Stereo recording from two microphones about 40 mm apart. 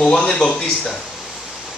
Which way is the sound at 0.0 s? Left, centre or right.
Centre.